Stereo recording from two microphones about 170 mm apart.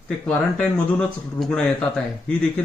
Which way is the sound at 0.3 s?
5° left (ahead or behind).